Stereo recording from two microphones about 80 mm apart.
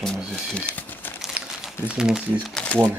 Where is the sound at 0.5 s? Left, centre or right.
Centre.